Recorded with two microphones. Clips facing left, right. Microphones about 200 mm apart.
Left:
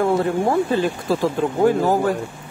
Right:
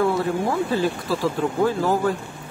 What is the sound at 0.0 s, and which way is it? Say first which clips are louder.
Speech: left 3 dB; 50° left (ahead or behind).